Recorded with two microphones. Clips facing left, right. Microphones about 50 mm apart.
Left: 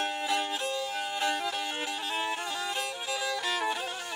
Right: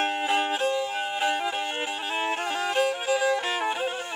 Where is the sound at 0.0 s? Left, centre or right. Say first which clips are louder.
Right 5 dB; right.